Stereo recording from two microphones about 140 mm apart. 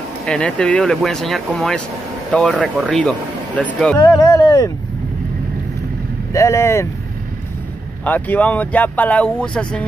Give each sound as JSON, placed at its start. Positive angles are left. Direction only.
{"t": 0.2, "sound": "speech", "side_deg": 5}
{"t": 4.0, "sound": "a sound", "side_deg": 30}
{"t": 6.3, "sound": "speech", "side_deg": 20}
{"t": 8.0, "sound": "speech", "side_deg": 10}